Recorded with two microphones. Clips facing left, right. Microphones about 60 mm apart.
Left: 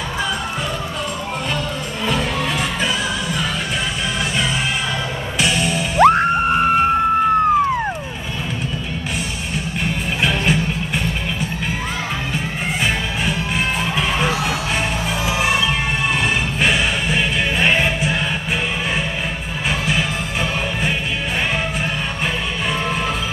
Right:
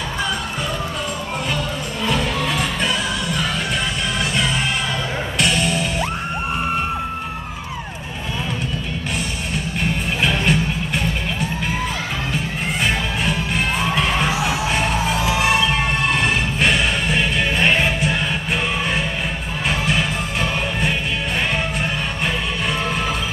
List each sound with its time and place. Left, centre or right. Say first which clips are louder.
2.0 s music: even; centre
5.4 s music: left 1 dB; centre
5.9 s music: left 11 dB; left
10.2 s music: even; centre
13.7 s crowd: right 1 dB; centre
14.8 s music: right 2 dB; centre